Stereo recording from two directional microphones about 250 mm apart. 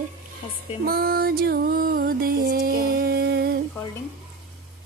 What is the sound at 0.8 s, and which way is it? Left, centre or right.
Music, right.